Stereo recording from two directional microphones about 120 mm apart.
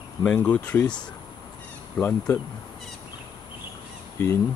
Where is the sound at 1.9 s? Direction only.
10° left (ahead or behind).